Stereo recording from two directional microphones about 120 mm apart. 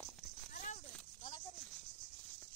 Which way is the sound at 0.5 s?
90° left.